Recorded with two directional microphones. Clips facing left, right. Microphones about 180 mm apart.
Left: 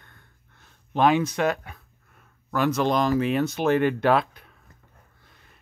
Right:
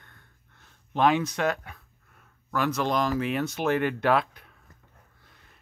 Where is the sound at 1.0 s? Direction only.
5° left (ahead or behind); by 4.4 s 30° left (ahead or behind).